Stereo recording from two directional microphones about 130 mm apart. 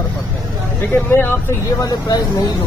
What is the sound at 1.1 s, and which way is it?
Speech, 15° left (ahead or behind).